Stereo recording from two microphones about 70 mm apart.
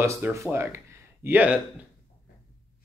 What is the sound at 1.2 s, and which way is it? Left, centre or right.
Speech, right.